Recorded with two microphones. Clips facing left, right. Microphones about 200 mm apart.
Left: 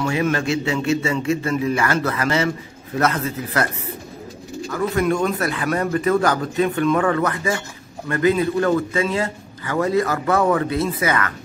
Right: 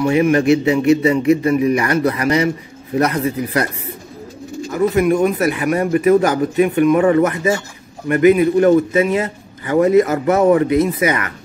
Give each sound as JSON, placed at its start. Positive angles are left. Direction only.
{"t": 0.0, "sound": "a man's voice", "side_deg": -20}
{"t": 4.6, "sound": "a man's voice", "side_deg": -20}